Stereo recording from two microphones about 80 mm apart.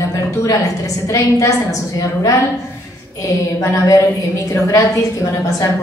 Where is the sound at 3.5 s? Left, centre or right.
Left.